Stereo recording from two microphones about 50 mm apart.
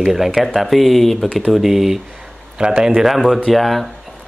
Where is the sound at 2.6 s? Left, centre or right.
Centre.